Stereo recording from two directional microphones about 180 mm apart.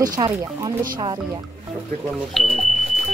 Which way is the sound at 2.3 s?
Centre (ahead or behind).